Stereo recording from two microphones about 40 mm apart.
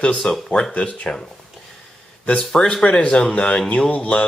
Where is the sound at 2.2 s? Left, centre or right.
Left.